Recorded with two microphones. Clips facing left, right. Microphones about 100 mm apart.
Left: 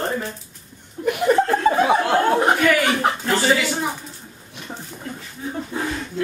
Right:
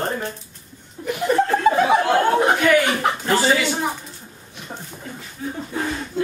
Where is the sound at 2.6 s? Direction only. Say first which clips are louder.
Right 1 dB; 5° right (ahead or behind).